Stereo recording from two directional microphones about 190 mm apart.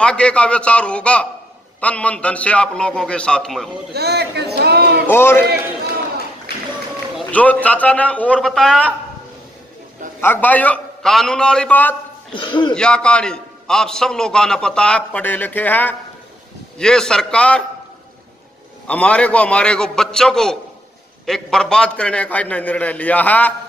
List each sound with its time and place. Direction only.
0.0 s a man's voice: 5° left (ahead or behind)
3.9 s a sound: 60° right (ahead or behind)
5.1 s a man's voice: 10° left (ahead or behind)
7.2 s a man's voice: 5° left (ahead or behind)
10.2 s a man's voice: 10° left (ahead or behind)
12.4 s speech: 25° left (ahead or behind)
12.7 s a man's voice: 5° left (ahead or behind)
18.9 s a man's voice: 5° left (ahead or behind)